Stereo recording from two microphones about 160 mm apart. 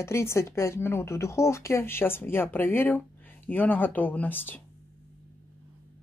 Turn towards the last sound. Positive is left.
turn(degrees=10)  # may be behind; listen again after turning